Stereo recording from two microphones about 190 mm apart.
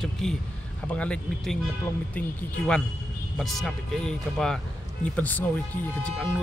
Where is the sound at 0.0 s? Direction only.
5° left (ahead or behind).